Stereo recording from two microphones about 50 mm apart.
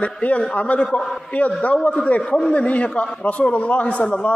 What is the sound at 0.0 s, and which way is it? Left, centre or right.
A man's voice, left.